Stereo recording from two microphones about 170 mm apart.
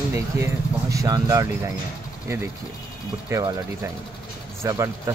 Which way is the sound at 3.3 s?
20° right (ahead or behind).